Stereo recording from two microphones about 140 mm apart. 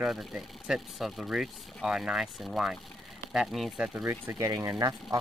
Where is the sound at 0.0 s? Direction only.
5° right (ahead or behind).